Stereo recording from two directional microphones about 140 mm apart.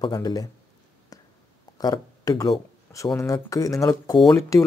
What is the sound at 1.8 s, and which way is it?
Speech, 25° left (ahead or behind).